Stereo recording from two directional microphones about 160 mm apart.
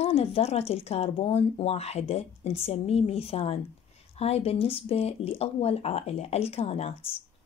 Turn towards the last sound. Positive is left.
turn(degrees=40)  # may be behind; listen again after turning